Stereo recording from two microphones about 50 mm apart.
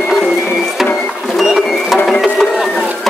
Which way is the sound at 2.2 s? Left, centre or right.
Centre.